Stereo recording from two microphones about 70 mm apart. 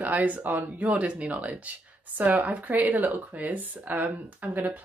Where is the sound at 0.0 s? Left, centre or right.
Right.